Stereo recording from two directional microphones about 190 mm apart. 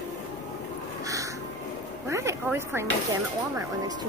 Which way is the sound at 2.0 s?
15° right (ahead or behind).